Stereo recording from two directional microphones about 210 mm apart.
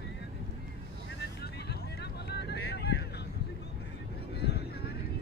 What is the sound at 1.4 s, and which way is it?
Vehicle, 50° left (ahead or behind).